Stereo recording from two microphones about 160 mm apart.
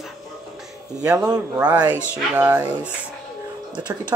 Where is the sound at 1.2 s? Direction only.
5° right (ahead or behind).